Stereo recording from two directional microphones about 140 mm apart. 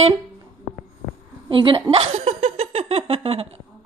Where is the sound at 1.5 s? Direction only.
40° right (ahead or behind).